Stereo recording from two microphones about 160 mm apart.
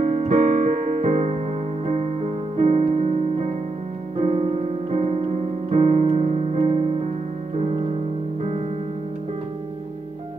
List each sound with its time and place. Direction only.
0.0 s music: 50° right (ahead or behind)
4.2 s music: 45° right (ahead or behind)